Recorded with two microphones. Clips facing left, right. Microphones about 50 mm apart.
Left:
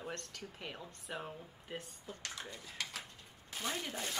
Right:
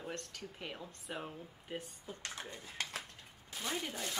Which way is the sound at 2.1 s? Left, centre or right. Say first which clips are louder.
Right 1 dB; centre.